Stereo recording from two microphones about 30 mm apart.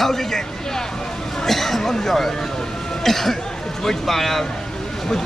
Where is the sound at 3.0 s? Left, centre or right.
Centre.